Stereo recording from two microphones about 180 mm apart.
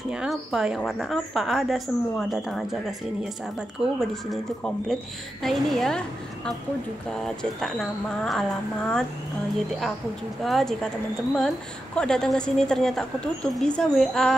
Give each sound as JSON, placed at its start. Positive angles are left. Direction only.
{"t": 0.1, "sound": "a woman's voice", "side_deg": -5}
{"t": 8.2, "sound": "a woman's voice", "side_deg": 5}
{"t": 10.4, "sound": "a woman's voice", "side_deg": 0}